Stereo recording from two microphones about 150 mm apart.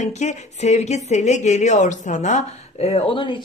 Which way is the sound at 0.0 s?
50° left (ahead or behind).